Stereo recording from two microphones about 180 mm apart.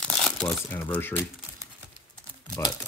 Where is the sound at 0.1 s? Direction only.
5° left (ahead or behind).